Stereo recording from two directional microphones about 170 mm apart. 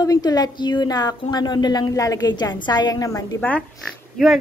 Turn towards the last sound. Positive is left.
turn(degrees=0)  # may be behind; listen again after turning